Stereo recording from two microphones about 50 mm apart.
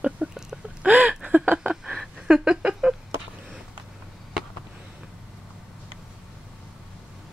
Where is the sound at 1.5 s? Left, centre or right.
Centre.